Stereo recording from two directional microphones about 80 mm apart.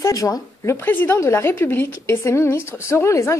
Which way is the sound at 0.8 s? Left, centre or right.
Left.